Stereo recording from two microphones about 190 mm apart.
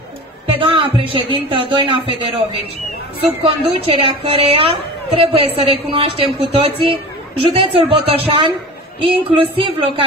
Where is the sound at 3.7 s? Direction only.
30° right (ahead or behind).